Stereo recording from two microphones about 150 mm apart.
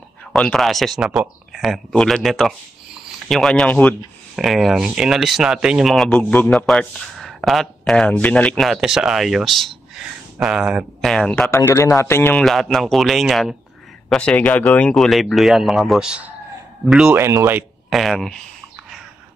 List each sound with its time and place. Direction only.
0.3 s a man's voice: centre (ahead or behind)
11.1 s a man's voice: 5° left (ahead or behind)
11.5 s a man's voice: 20° left (ahead or behind)
12.4 s a man's voice: centre (ahead or behind)
17.2 s speech: 20° right (ahead or behind)
17.6 s speech: centre (ahead or behind)